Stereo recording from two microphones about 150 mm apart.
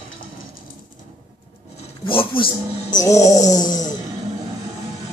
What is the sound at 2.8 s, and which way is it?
Speech, 25° left (ahead or behind).